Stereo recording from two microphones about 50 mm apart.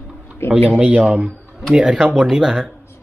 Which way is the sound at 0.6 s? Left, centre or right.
Right.